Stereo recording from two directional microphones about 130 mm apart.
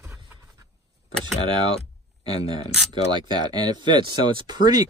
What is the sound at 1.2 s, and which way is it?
Speech, 35° right (ahead or behind).